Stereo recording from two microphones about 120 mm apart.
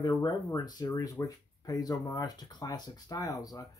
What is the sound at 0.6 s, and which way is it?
Speech, 35° left (ahead or behind).